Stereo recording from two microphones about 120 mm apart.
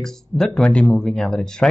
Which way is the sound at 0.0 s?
5° left (ahead or behind).